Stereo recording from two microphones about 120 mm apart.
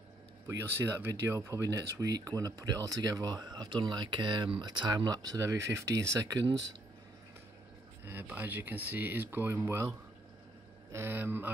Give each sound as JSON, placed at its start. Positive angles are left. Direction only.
{"t": 0.5, "sound": "speech", "side_deg": -20}
{"t": 8.0, "sound": "speech", "side_deg": -15}